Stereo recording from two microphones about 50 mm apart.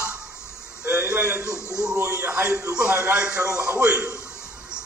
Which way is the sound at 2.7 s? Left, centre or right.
Right.